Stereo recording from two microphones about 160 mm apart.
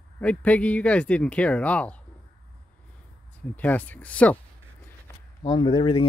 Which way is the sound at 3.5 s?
10° left (ahead or behind).